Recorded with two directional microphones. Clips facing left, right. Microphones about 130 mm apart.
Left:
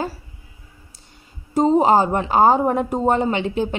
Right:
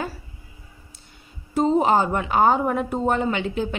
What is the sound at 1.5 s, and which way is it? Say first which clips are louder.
Speech: left 3 dB; 35° left (ahead or behind).